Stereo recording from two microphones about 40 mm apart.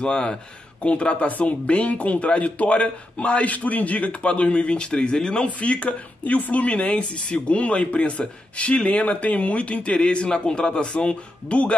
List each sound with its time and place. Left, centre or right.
0.0 s a man's voice: left
5.5 s speech: left
9.9 s a man's voice: left